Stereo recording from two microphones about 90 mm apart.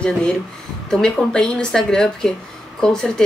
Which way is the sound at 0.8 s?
10° left (ahead or behind).